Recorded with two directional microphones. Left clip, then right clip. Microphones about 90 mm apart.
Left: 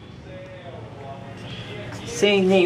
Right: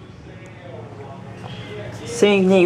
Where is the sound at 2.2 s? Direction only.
35° right (ahead or behind).